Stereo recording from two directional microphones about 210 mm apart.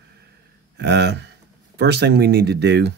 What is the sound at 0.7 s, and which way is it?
Speech, 55° right (ahead or behind).